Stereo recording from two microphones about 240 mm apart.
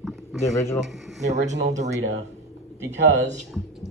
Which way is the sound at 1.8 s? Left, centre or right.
Right.